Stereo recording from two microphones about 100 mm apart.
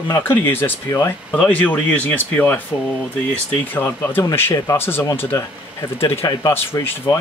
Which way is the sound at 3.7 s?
20° left (ahead or behind).